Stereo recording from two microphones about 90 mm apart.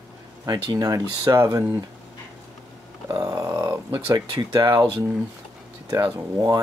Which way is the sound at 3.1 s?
40° right (ahead or behind).